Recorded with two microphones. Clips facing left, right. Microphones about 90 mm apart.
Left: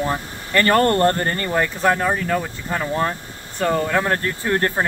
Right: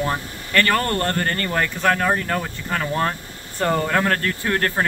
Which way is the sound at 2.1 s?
Centre (ahead or behind).